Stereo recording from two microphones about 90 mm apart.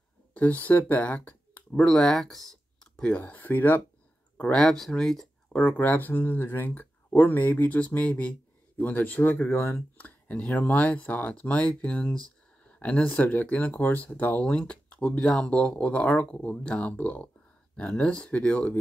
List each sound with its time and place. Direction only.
0.3 s speech: 15° left (ahead or behind)